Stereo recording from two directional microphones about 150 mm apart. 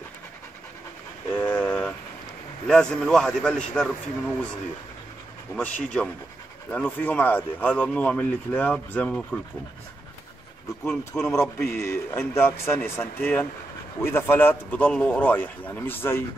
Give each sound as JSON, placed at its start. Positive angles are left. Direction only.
{"t": 1.3, "sound": "vehicle", "side_deg": 10}
{"t": 2.6, "sound": "a man's voice", "side_deg": 5}
{"t": 5.6, "sound": "speech", "side_deg": 10}
{"t": 10.9, "sound": "a man's voice", "side_deg": 5}
{"t": 11.3, "sound": "speech", "side_deg": 15}